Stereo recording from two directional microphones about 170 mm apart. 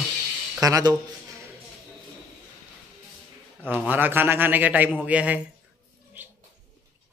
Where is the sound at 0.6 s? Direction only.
20° right (ahead or behind).